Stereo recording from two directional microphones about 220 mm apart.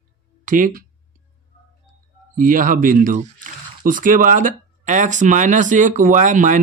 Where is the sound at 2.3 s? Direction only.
40° right (ahead or behind).